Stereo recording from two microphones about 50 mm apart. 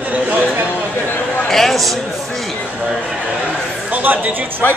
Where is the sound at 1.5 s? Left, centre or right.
Centre.